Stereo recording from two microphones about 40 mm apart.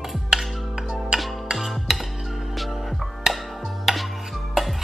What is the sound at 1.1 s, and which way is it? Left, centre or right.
Music, right.